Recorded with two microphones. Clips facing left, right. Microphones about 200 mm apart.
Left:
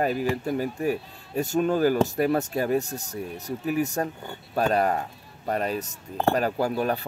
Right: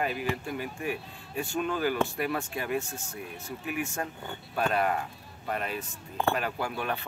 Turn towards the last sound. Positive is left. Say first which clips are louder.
# left 7 dB
turn(degrees=40)  # may be behind; listen again after turning